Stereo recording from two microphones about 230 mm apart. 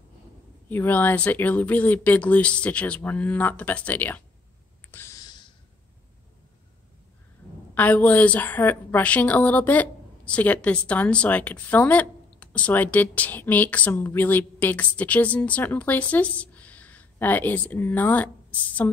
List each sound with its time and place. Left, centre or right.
0.7 s a woman's voice: centre
4.9 s sigh: centre
7.7 s a woman's voice: centre